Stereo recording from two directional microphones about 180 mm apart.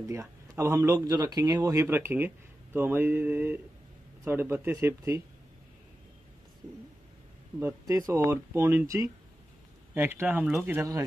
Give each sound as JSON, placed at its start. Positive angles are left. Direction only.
{"t": 0.0, "sound": "speech", "side_deg": -15}
{"t": 7.6, "sound": "speech", "side_deg": -20}